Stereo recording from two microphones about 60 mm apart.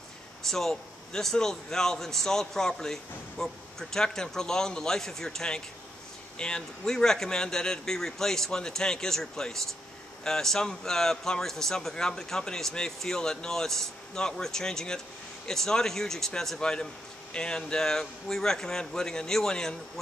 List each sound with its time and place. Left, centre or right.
0.5 s speech: centre